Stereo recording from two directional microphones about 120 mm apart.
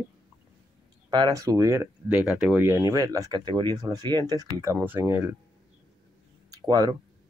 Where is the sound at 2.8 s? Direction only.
30° right (ahead or behind).